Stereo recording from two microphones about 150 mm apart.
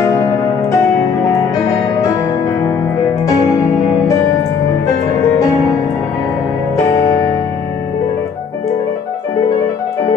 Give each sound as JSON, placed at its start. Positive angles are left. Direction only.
{"t": 0.0, "sound": "music", "side_deg": 20}